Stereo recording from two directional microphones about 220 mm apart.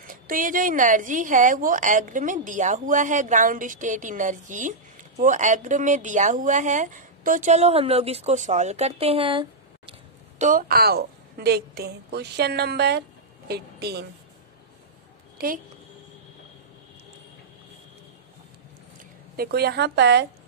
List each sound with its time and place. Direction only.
0.0 s a woman's voice: 40° right (ahead or behind); by 9.9 s 25° right (ahead or behind)
10.4 s a woman's voice: 40° right (ahead or behind)
15.3 s a sound: 40° right (ahead or behind)
19.3 s a woman's voice: 45° right (ahead or behind)